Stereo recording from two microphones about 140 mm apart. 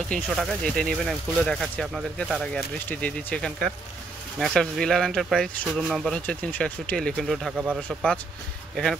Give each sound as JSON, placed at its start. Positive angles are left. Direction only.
{"t": 0.1, "sound": "speech", "side_deg": 0}